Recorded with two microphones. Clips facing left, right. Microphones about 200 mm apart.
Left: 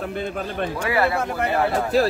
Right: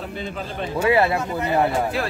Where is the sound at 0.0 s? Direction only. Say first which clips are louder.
Left 3 dB; 55° left (ahead or behind).